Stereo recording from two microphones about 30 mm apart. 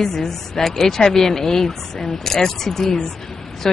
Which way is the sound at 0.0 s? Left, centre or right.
Centre.